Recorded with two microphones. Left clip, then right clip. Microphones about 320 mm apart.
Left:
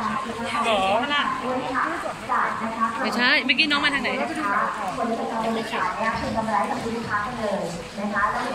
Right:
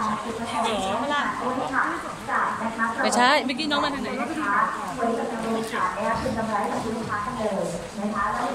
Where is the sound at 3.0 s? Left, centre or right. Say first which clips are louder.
Right 1 dB; right.